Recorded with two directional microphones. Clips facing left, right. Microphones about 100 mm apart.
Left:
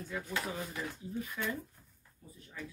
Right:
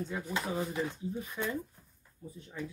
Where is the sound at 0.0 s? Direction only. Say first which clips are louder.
Right 3 dB; 20° right (ahead or behind).